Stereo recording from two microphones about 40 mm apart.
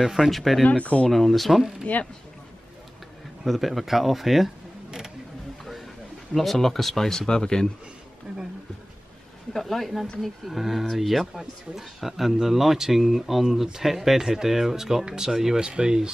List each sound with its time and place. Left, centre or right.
0.2 s a man's voice: centre
0.7 s speech: left
1.1 s a man's voice: centre
1.9 s speech: left
3.4 s a man's voice: centre
6.3 s speech: centre
9.5 s a man's voice: centre